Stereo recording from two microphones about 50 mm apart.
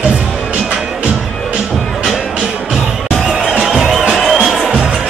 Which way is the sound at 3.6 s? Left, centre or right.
Centre.